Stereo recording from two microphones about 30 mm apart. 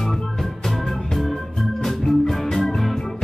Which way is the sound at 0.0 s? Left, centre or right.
Centre.